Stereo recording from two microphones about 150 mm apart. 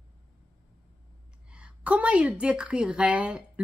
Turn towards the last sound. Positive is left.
turn(degrees=-5)  # may be behind; listen again after turning